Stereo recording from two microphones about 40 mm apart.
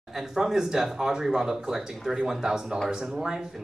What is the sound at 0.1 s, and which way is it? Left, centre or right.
Speech, centre.